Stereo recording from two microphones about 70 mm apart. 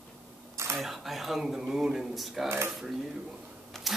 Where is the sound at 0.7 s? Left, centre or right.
Centre.